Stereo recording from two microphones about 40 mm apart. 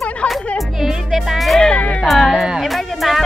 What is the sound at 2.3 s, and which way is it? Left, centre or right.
Speech, centre.